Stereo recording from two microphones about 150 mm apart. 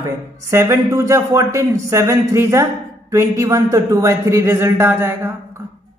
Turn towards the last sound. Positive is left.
turn(degrees=-15)  # may be behind; listen again after turning